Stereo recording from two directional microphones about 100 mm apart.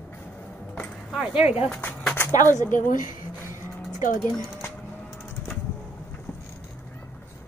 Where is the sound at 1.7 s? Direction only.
20° left (ahead or behind).